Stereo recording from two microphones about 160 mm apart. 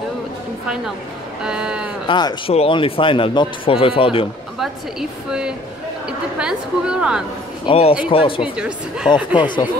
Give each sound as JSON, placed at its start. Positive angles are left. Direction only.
{"t": 1.4, "sound": "a woman's voice", "side_deg": -5}
{"t": 2.0, "sound": "speech", "side_deg": 30}
{"t": 6.0, "sound": "a woman's voice", "side_deg": -5}
{"t": 7.6, "sound": "speech", "side_deg": 40}
{"t": 8.4, "sound": "a woman's voice", "side_deg": -5}